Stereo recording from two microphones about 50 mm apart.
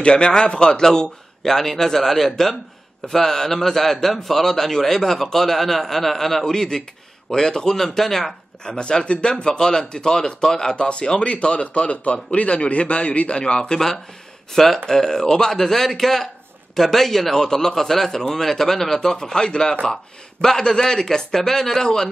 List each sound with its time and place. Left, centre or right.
0.0 s a man's voice: centre
8.6 s a man's voice: centre
14.5 s a man's voice: centre